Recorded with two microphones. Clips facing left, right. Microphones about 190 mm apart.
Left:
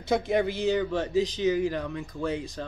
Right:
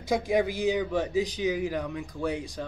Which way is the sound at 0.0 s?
10° right (ahead or behind).